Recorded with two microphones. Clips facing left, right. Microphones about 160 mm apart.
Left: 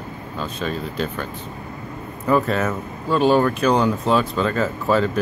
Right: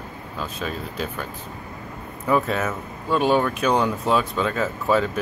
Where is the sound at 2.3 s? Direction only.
Centre (ahead or behind).